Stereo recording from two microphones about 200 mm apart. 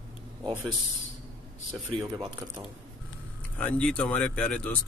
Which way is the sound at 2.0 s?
20° right (ahead or behind).